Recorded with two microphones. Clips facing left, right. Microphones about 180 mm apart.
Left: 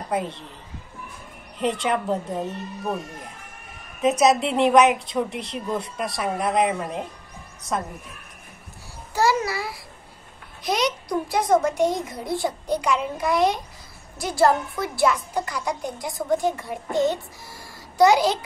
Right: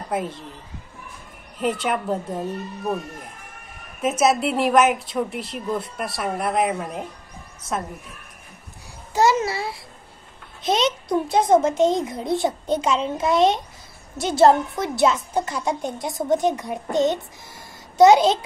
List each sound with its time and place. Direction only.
1.6 s a woman's voice: 5° right (ahead or behind)
4.0 s a woman's voice: 5° right (ahead or behind)
9.1 s a woman's voice: 20° right (ahead or behind)